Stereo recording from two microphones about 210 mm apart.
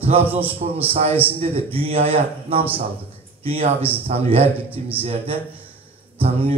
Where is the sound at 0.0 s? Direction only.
25° right (ahead or behind).